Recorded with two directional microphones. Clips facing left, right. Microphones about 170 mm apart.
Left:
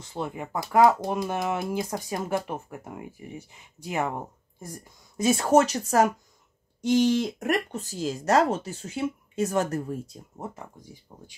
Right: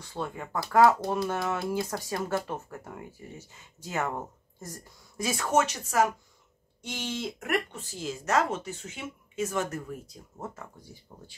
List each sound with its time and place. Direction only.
0.0 s speech: 20° left (ahead or behind)
5.1 s speech: 25° left (ahead or behind)
10.4 s speech: 15° left (ahead or behind)